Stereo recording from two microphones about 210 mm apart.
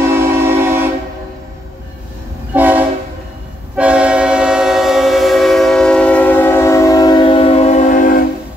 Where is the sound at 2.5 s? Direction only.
10° right (ahead or behind); by 8.2 s 40° left (ahead or behind).